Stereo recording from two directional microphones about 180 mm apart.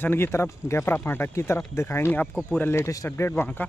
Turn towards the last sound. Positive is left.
turn(degrees=10)  # may be behind; listen again after turning